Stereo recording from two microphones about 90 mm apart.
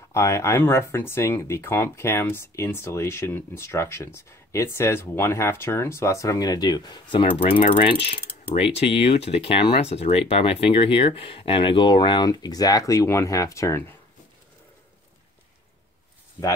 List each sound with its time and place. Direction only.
0.1 s speech: 35° left (ahead or behind); by 7.2 s 50° left (ahead or behind)
7.2 s speech: 85° left; by 12.3 s 60° left (ahead or behind)
12.3 s speech: 45° left (ahead or behind)